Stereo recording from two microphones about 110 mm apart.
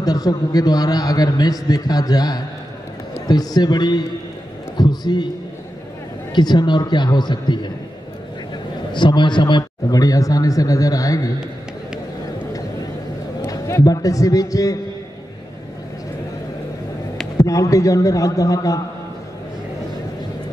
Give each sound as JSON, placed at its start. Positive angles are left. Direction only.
{"t": 0.0, "sound": "a man's voice", "side_deg": 35}
{"t": 6.3, "sound": "a man's voice", "side_deg": 40}
{"t": 8.9, "sound": "a man's voice", "side_deg": 45}
{"t": 13.5, "sound": "a man's voice", "side_deg": 30}
{"t": 17.4, "sound": "a man's voice", "side_deg": 30}